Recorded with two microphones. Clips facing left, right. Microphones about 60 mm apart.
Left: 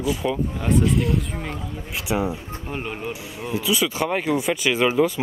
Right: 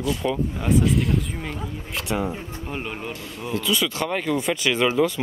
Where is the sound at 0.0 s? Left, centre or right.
Centre.